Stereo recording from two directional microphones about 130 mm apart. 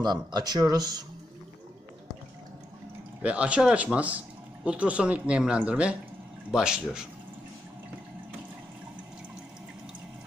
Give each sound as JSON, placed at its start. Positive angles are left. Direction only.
{"t": 0.0, "sound": "speech", "side_deg": -35}
{"t": 3.2, "sound": "speech", "side_deg": -10}